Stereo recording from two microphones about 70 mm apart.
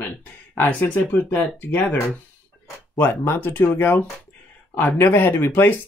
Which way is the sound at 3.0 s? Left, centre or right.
Left.